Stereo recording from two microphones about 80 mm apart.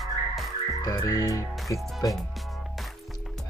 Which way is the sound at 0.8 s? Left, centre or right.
Left.